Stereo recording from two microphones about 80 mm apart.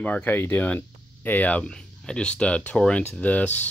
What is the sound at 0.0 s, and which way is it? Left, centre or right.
Speech, centre.